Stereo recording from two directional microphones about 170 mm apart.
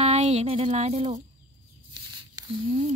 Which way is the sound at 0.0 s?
40° right (ahead or behind).